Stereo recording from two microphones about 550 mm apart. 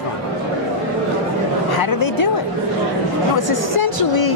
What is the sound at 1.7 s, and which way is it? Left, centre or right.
Speech, left.